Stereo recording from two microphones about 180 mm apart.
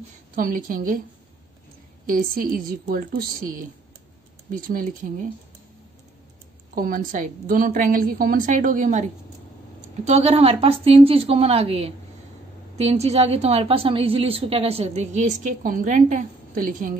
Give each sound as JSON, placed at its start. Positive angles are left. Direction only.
{"t": 0.4, "sound": "a woman's voice", "side_deg": -50}
{"t": 2.0, "sound": "a woman's voice", "side_deg": -50}
{"t": 6.7, "sound": "a woman's voice", "side_deg": -50}